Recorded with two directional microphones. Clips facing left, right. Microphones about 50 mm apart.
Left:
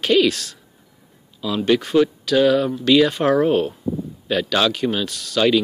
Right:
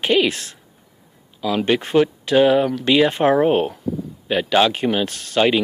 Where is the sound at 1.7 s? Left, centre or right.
Right.